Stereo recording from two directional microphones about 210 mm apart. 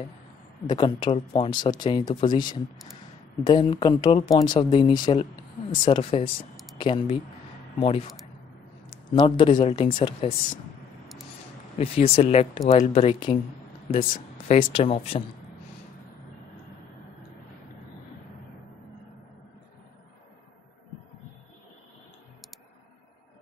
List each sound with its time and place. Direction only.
0.7 s speech: 20° left (ahead or behind)
3.4 s speech: 20° left (ahead or behind)
6.5 s a sound: centre (ahead or behind)
6.8 s a man's voice: 25° left (ahead or behind)
11.8 s speech: 30° left (ahead or behind)
13.8 s speech: 40° left (ahead or behind)
14.7 s speech: 25° left (ahead or behind)